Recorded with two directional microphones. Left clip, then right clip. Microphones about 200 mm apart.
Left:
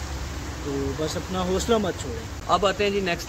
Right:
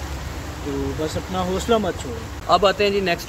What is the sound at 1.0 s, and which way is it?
Speech, 15° left (ahead or behind).